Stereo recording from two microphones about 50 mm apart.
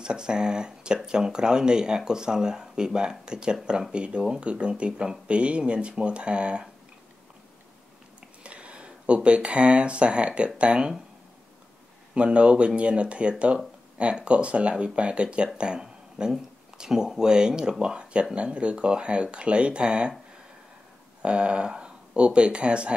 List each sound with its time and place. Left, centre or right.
0.0 s speech: centre
8.5 s speech: right
12.1 s speech: right
21.2 s speech: right